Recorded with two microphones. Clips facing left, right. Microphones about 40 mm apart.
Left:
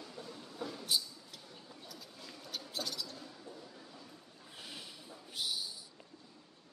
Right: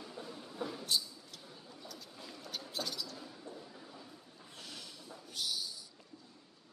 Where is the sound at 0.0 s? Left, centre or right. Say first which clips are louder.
Right 1 dB; centre.